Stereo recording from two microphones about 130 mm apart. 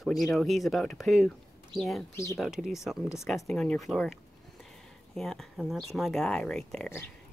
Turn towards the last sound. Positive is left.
turn(degrees=5)  # may be behind; listen again after turning